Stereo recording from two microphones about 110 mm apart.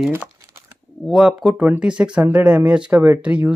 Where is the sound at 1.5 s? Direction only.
15° right (ahead or behind).